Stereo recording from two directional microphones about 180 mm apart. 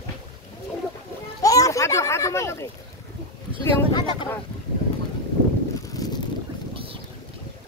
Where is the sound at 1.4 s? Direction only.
20° left (ahead or behind).